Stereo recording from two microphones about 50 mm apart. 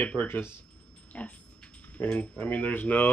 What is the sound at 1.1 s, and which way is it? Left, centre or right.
Dog, left.